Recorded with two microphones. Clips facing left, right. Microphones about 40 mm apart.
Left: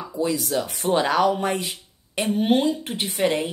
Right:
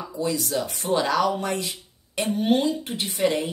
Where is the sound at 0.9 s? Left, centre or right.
Left.